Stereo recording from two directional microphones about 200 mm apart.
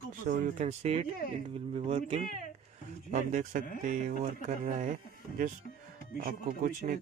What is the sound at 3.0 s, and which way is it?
Speech, 40° right (ahead or behind).